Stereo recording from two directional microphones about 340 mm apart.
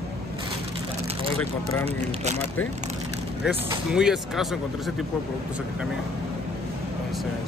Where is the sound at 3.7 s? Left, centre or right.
Centre.